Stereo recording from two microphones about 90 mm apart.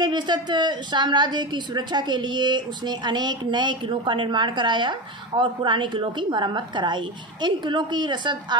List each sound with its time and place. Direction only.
0.0 s a woman's voice: 55° right (ahead or behind)